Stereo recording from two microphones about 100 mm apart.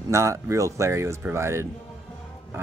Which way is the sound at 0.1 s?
30° right (ahead or behind).